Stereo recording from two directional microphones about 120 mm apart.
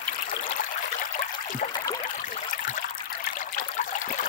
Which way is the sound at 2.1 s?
90° left.